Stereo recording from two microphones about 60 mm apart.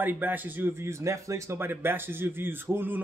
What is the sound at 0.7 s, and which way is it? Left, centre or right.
Speech, right.